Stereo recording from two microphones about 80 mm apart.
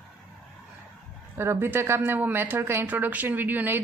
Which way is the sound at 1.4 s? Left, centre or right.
Right.